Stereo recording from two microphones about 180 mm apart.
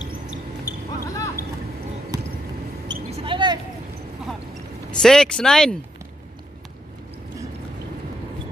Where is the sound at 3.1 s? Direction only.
30° right (ahead or behind).